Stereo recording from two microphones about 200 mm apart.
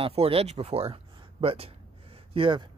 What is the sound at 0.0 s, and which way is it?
Speech, 30° right (ahead or behind).